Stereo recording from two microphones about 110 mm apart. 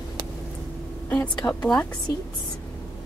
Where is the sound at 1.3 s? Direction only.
5° left (ahead or behind).